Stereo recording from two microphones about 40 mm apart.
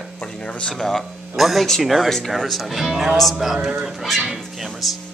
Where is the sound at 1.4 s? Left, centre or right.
Centre.